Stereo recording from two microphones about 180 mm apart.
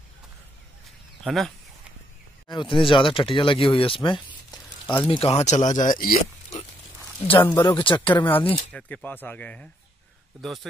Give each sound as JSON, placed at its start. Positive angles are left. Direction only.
{"t": 1.2, "sound": "speech", "side_deg": 0}
{"t": 2.4, "sound": "speech", "side_deg": 25}
{"t": 7.3, "sound": "speech", "side_deg": 10}
{"t": 7.6, "sound": "speech", "side_deg": 25}
{"t": 7.9, "sound": "speech", "side_deg": 10}